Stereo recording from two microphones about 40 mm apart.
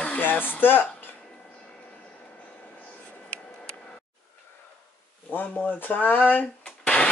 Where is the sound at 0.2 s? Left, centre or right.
Left.